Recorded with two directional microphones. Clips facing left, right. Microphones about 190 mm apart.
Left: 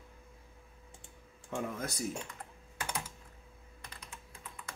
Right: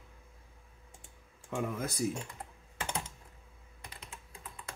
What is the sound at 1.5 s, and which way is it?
Speech, 5° right (ahead or behind).